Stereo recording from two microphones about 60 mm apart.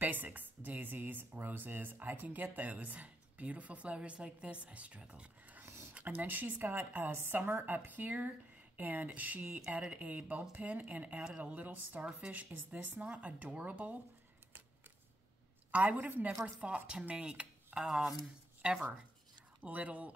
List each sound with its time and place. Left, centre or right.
0.0 s a woman's voice: right
5.9 s a woman's voice: right
15.7 s a woman's voice: right
16.5 s speech: centre
19.6 s a woman's voice: right